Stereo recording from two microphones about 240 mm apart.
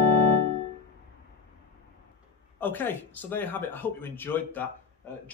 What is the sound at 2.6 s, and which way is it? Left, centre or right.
Speech, centre.